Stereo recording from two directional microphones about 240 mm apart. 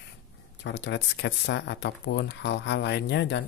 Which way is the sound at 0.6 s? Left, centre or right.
Left.